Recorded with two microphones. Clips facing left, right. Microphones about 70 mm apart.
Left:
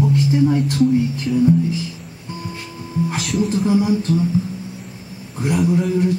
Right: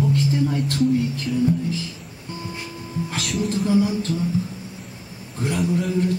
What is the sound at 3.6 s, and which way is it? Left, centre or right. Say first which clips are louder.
Music: left 1 dB; centre.